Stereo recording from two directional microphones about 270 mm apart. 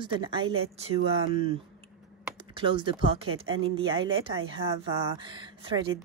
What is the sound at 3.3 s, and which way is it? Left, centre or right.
Speech, right.